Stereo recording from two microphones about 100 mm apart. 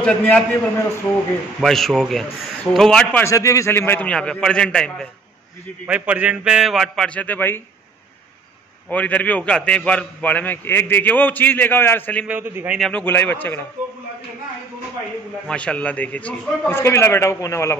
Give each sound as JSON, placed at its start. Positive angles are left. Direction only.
{"t": 0.0, "sound": "a man's voice", "side_deg": 10}
{"t": 1.6, "sound": "a man's voice", "side_deg": 0}
{"t": 3.3, "sound": "a man's voice", "side_deg": 30}
{"t": 4.1, "sound": "a man's voice", "side_deg": 10}
{"t": 5.9, "sound": "a man's voice", "side_deg": -15}
{"t": 7.1, "sound": "a man's voice", "side_deg": 15}
{"t": 8.9, "sound": "a man's voice", "side_deg": 15}
{"t": 12.3, "sound": "a man's voice", "side_deg": -20}
{"t": 12.9, "sound": "a man's voice", "side_deg": 20}
{"t": 15.4, "sound": "a man's voice", "side_deg": 10}